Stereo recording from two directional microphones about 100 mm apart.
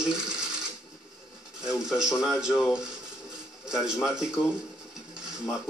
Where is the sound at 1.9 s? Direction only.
5° right (ahead or behind).